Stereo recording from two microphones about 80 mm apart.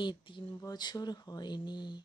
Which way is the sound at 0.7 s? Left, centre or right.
Left.